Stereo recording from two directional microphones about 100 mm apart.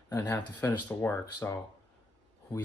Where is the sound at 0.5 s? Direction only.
15° left (ahead or behind).